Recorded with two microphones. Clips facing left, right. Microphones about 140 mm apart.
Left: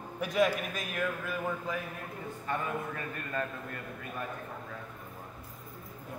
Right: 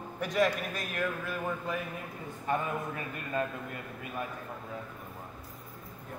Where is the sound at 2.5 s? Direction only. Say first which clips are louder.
Right 3 dB; 15° right (ahead or behind).